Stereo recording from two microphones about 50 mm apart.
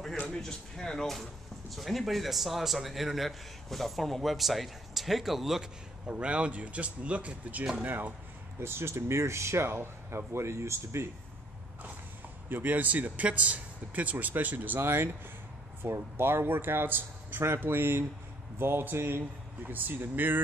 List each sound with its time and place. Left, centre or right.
0.3 s a man's voice: centre
6.0 s speech: right
8.5 s speech: right
12.4 s speech: right
14.8 s a man's voice: right
19.7 s speech: right